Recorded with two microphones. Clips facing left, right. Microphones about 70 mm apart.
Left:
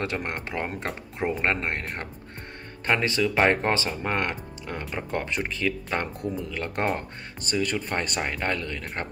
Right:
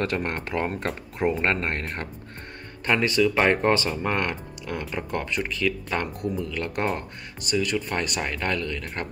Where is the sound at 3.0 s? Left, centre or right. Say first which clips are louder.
Right 3 dB; left.